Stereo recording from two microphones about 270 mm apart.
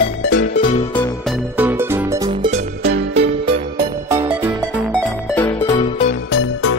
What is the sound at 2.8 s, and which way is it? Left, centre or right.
Music, right.